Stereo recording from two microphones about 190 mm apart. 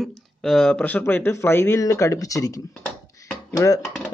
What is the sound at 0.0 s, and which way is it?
Speech, centre (ahead or behind).